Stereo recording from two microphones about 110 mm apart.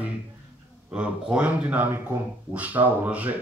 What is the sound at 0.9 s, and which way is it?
Speech, 10° right (ahead or behind).